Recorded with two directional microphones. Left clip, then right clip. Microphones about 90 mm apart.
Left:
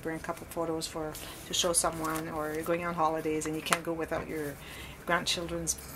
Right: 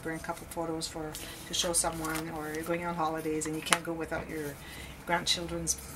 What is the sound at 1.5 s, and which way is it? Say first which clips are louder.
Speech: left 2 dB; 25° left (ahead or behind).